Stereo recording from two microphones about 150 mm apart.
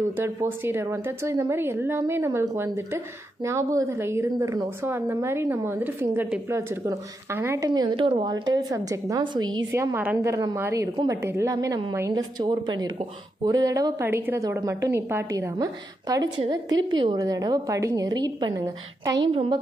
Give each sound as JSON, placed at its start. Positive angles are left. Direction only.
{"t": 0.2, "sound": "a woman's voice", "side_deg": -15}
{"t": 9.7, "sound": "a woman's voice", "side_deg": -15}